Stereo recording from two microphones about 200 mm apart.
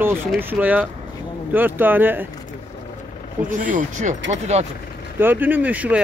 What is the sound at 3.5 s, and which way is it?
Speech, 40° right (ahead or behind).